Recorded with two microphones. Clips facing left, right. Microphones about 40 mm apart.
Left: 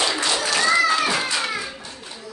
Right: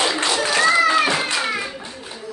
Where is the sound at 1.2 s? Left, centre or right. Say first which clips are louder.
Right 2 dB; centre.